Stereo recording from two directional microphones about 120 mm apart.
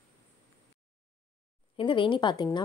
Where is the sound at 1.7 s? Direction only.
45° left (ahead or behind).